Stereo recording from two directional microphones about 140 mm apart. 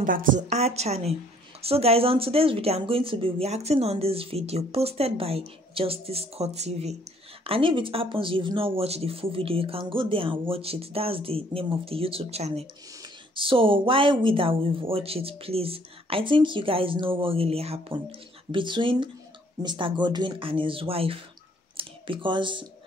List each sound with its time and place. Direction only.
0.0 s a woman's voice: 75° right (ahead or behind)
0.5 s speech: 50° right (ahead or behind)
7.4 s speech: 40° right (ahead or behind)
13.0 s speech: 35° right (ahead or behind)